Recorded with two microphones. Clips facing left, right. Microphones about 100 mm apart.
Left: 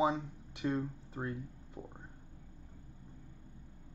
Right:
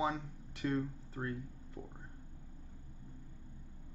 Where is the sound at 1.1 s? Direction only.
15° left (ahead or behind).